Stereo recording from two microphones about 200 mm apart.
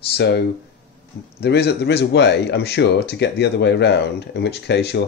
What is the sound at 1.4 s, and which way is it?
Speech, 55° left (ahead or behind).